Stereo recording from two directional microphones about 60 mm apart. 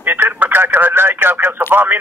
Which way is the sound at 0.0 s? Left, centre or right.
Right.